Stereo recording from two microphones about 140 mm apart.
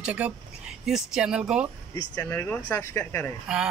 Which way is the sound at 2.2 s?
15° left (ahead or behind).